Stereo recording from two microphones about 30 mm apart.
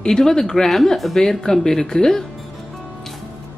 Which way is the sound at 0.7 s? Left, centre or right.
Centre.